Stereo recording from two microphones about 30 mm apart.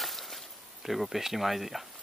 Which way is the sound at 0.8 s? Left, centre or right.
Centre.